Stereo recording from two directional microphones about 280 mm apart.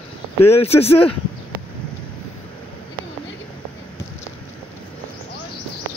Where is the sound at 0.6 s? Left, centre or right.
Left.